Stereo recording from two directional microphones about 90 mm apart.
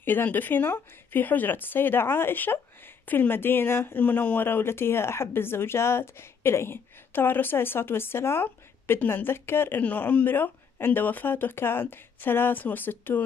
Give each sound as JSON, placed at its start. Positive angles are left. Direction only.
{"t": 0.0, "sound": "speech", "side_deg": 20}